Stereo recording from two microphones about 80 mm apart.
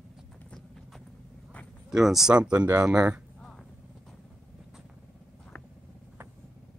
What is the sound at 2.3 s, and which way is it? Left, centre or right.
Speech, centre.